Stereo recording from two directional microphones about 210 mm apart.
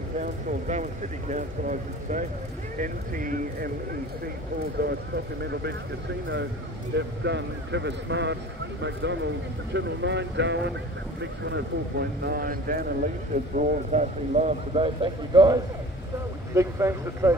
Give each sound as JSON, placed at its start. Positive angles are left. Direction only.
{"t": 0.2, "sound": "speech", "side_deg": -35}
{"t": 4.7, "sound": "speech", "side_deg": -50}
{"t": 7.0, "sound": "speech", "side_deg": -55}
{"t": 13.6, "sound": "speech", "side_deg": -30}